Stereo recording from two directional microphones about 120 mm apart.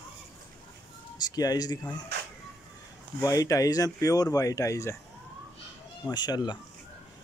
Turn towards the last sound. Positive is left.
turn(degrees=35)  # may be behind; listen again after turning